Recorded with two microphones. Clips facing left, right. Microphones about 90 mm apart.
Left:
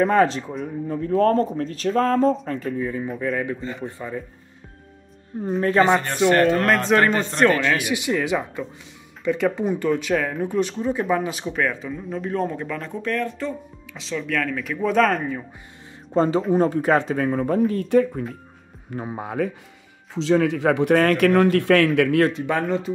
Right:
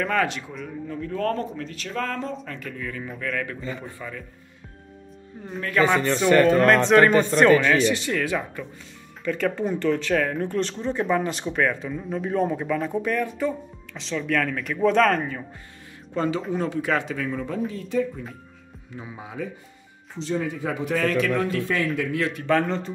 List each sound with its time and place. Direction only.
0.0 s a man's voice: 35° left (ahead or behind)
5.6 s speech: 30° left (ahead or behind)
6.2 s speech: 15° left (ahead or behind)
6.6 s speech: centre (ahead or behind)
7.7 s speech: 10° left (ahead or behind)
16.1 s speech: 35° left (ahead or behind); by 19.5 s 55° left (ahead or behind)
20.2 s speech: 85° left; by 22.2 s 70° left (ahead or behind)
22.5 s speech: 5° left (ahead or behind)